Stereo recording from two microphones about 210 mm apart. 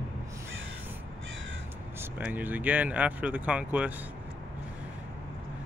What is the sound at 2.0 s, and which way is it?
Speech, 10° right (ahead or behind).